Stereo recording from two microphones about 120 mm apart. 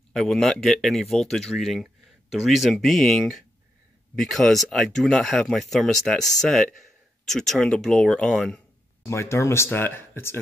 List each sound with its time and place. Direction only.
0.1 s speech: centre (ahead or behind)
9.0 s speech: 25° left (ahead or behind)